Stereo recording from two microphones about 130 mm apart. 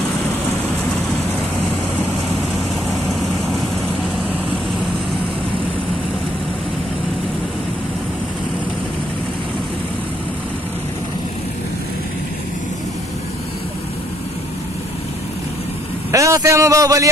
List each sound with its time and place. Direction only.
16.1 s a man's voice: 25° right (ahead or behind)